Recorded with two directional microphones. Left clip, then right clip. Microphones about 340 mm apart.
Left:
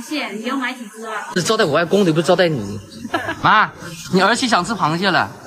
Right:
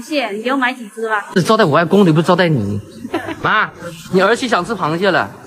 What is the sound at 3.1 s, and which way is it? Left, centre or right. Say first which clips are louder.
Speech: left 2 dB; centre.